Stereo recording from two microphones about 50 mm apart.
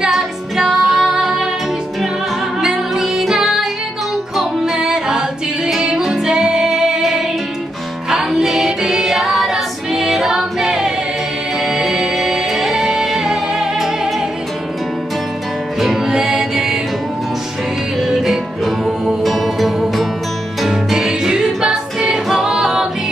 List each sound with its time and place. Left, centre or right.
0.0 s music: centre
2.6 s music: centre
15.8 s music: centre
17.9 s music: centre